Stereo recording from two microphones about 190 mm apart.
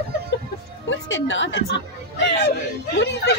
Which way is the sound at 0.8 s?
85° left.